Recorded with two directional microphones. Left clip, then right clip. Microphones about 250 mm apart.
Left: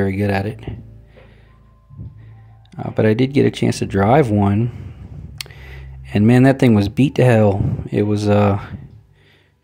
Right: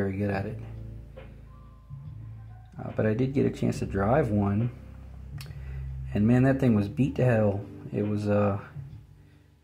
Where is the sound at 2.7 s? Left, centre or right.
Left.